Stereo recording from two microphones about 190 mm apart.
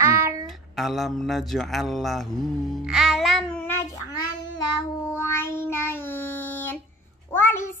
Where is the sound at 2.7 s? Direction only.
Centre (ahead or behind).